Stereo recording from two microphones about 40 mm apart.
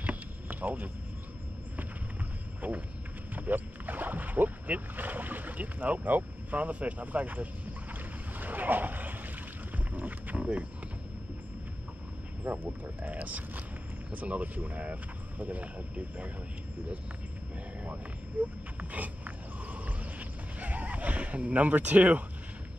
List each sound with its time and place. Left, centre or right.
0.0 s vehicle: right
2.6 s speech: right
3.3 s speech: right
7.9 s boat: right
9.9 s a sound: right
10.4 s speech: right
12.4 s speech: right
13.0 s speech: right
18.4 s speech: right
18.8 s music: right